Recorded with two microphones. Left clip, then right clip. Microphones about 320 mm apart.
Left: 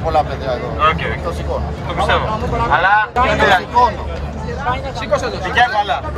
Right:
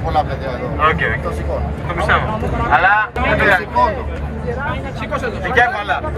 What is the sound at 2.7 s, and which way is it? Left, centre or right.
Speech, centre.